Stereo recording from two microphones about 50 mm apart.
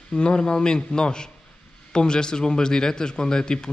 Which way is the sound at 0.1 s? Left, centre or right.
Centre.